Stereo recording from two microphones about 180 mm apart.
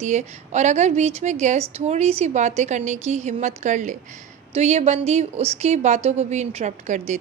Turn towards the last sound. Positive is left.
turn(degrees=-40)  # may be behind; listen again after turning